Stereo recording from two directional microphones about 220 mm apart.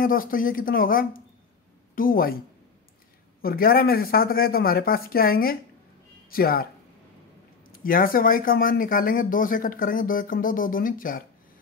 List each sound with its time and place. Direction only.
0.0 s speech: 40° left (ahead or behind)
3.4 s speech: 40° left (ahead or behind)
7.8 s speech: 40° left (ahead or behind)